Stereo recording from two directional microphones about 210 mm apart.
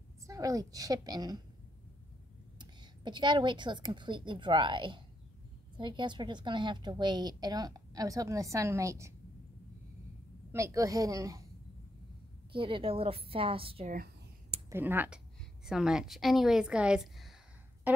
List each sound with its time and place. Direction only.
0.3 s a woman's voice: 15° right (ahead or behind)
2.6 s a woman's voice: 20° right (ahead or behind)
10.5 s a woman's voice: 15° right (ahead or behind)
12.5 s a woman's voice: 25° right (ahead or behind)
14.7 s a woman's voice: 10° right (ahead or behind)
17.9 s a sound: 5° right (ahead or behind)